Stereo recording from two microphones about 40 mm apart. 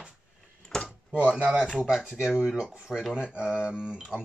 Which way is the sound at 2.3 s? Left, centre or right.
Right.